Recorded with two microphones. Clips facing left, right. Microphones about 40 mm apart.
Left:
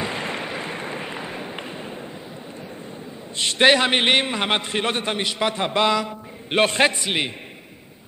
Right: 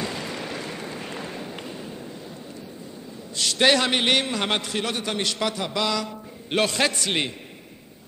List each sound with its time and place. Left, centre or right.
0.0 s a sound: left
3.3 s a man's voice: left
5.5 s a man's voice: left